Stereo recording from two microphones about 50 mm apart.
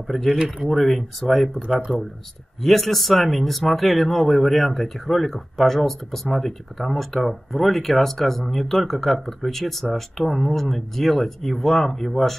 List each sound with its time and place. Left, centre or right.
0.0 s speech: centre
1.9 s speech: left
2.6 s speech: centre